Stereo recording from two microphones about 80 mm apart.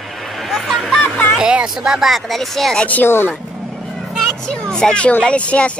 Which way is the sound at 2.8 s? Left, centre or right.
Left.